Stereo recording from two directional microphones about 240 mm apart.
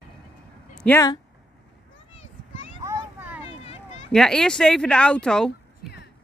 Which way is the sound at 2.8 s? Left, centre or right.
Centre.